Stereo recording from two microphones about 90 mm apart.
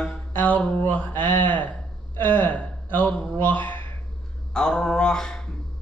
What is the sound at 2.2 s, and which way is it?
Speech, 20° left (ahead or behind).